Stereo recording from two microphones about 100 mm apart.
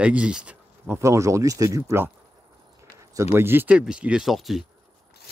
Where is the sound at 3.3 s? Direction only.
20° right (ahead or behind); by 4.6 s centre (ahead or behind).